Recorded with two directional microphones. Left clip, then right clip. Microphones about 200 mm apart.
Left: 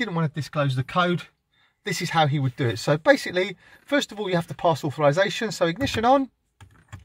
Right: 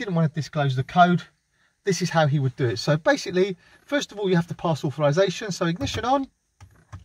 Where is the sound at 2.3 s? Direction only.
45° left (ahead or behind).